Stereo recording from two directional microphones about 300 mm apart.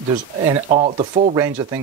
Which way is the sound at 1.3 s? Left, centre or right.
Centre.